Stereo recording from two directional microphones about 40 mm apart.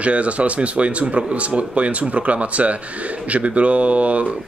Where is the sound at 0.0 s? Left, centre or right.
Right.